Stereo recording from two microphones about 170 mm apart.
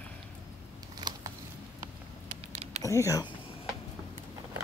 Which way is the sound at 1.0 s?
25° right (ahead or behind).